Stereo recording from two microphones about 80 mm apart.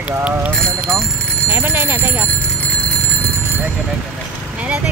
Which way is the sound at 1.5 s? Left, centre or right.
Right.